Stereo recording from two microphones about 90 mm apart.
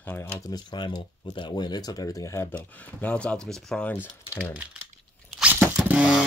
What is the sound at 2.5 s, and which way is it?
Speech, 15° left (ahead or behind).